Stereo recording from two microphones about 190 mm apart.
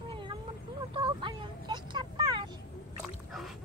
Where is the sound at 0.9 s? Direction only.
25° right (ahead or behind).